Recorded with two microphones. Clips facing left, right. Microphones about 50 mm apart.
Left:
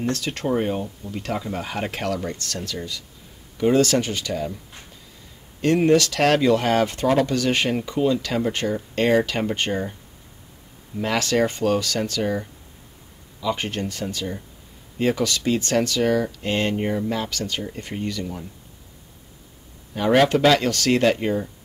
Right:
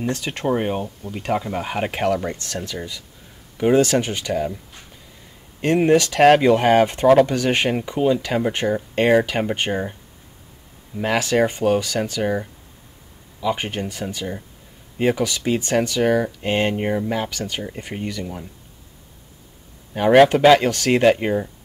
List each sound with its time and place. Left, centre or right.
0.0 s speech: centre
5.6 s speech: right
11.0 s speech: centre
19.9 s speech: right